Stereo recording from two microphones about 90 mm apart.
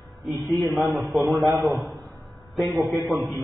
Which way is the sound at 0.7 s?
Centre (ahead or behind).